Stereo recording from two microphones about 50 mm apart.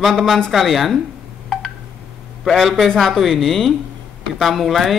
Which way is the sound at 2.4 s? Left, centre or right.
Centre.